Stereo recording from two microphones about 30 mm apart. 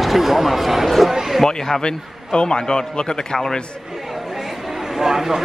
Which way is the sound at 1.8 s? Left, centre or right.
Left.